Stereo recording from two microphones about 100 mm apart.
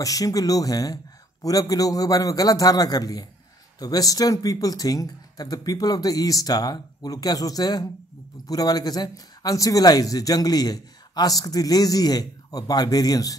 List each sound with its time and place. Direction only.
0.0 s speech: 35° left (ahead or behind)